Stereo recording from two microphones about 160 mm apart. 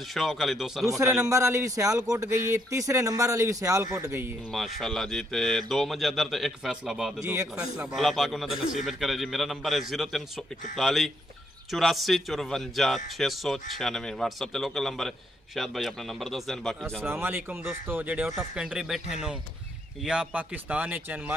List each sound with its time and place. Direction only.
0.1 s a man's voice: centre (ahead or behind)
1.2 s speech: 20° right (ahead or behind)
4.5 s a man's voice: centre (ahead or behind)
17.0 s speech: 15° right (ahead or behind)